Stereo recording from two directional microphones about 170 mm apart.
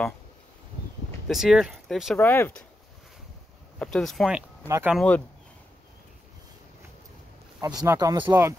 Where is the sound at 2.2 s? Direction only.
15° left (ahead or behind).